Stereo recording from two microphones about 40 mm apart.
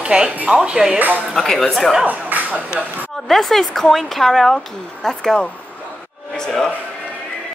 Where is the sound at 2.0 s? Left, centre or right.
Right.